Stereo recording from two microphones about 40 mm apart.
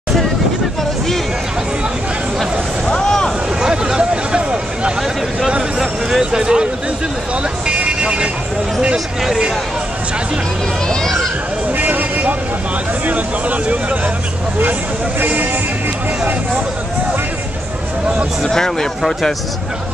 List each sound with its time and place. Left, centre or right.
2.9 s a sound: centre
3.6 s a sound: centre
5.8 s speech: centre
7.6 s vehicle: right
8.9 s speech: centre
11.7 s vehicle: right
13.0 s speech: right
18.4 s speech: centre